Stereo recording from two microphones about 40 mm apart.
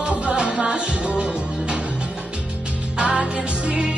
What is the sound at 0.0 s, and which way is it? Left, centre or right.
Music, right.